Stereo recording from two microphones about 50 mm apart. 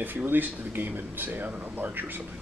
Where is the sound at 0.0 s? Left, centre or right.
Right.